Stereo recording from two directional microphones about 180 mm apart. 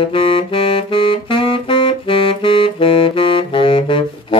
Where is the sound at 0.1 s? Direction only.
30° left (ahead or behind).